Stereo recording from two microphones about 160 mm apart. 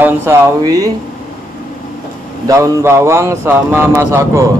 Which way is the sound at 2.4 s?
20° right (ahead or behind).